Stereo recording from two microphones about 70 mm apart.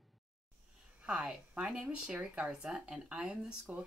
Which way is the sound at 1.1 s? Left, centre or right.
Centre.